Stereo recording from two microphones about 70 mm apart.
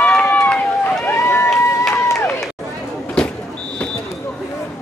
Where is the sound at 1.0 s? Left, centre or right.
Left.